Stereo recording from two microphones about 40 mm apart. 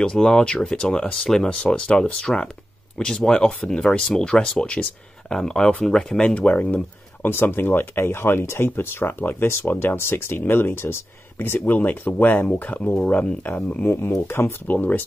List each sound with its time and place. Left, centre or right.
0.0 s speech: left
0.3 s speech: centre
1.1 s speech: centre
1.4 s speech: left
2.1 s speech: centre
6.2 s speech: left
7.2 s speech: left
11.5 s speech: left
13.6 s speech: left
13.8 s speech: left
14.7 s speech: left